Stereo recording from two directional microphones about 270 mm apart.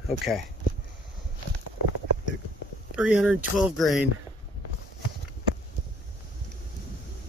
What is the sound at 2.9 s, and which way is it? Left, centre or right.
Speech, centre.